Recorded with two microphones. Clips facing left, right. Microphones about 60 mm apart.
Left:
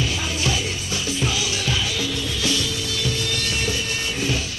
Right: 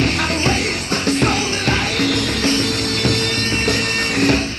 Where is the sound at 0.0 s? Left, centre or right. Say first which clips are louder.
Right 7 dB; right.